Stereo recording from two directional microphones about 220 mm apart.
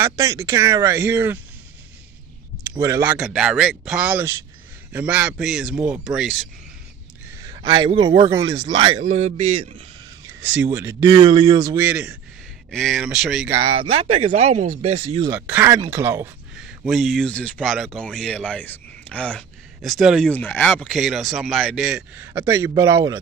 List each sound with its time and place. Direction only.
0.0 s speech: 15° right (ahead or behind)
2.7 s speech: 15° right (ahead or behind)
7.4 s speech: 20° right (ahead or behind)
10.4 s speech: 5° right (ahead or behind)
13.6 s speech: 70° right (ahead or behind)
13.9 s speech: 25° right (ahead or behind)
15.2 s speech: 10° right (ahead or behind)